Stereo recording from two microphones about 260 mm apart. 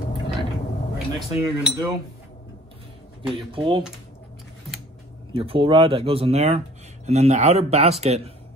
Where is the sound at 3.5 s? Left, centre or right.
Centre.